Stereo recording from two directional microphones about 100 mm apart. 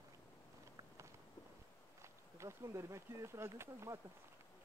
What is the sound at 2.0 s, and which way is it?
Speech, 30° right (ahead or behind).